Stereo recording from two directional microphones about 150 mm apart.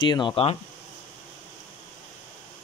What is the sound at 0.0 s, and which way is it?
Speech, 30° left (ahead or behind).